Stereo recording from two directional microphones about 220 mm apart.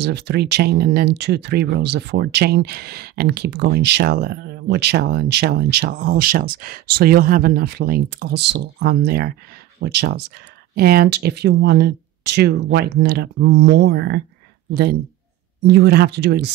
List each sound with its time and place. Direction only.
0.0 s speech: 50° right (ahead or behind)
15.6 s speech: 45° right (ahead or behind)